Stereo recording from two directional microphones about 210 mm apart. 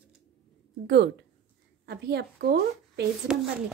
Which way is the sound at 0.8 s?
55° right (ahead or behind).